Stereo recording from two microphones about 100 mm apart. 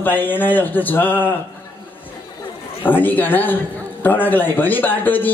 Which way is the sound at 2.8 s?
20° left (ahead or behind).